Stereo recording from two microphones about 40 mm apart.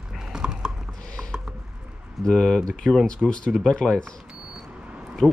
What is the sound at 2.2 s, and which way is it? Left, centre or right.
Speech, centre.